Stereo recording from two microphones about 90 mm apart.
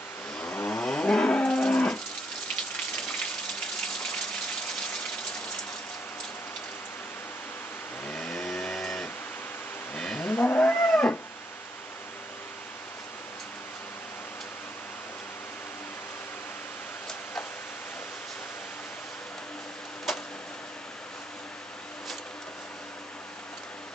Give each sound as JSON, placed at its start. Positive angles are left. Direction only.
{"t": 0.4, "sound": "moo", "side_deg": 10}
{"t": 8.1, "sound": "vehicle", "side_deg": 10}
{"t": 9.9, "sound": "moo", "side_deg": 10}
{"t": 10.3, "sound": "roaring cats", "side_deg": 20}
{"t": 20.1, "sound": "vehicle", "side_deg": 0}